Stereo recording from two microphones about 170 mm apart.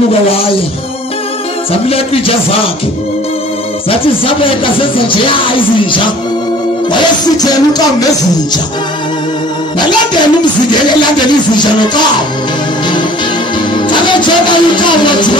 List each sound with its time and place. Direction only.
1.7 s music: 35° left (ahead or behind)
3.9 s music: 30° left (ahead or behind)
7.4 s music: 20° left (ahead or behind)
9.8 s music: 25° left (ahead or behind)
13.7 s music: 25° left (ahead or behind)